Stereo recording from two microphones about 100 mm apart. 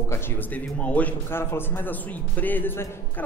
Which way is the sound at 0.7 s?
15° left (ahead or behind).